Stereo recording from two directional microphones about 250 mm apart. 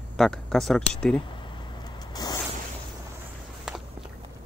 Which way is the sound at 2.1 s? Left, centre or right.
Centre.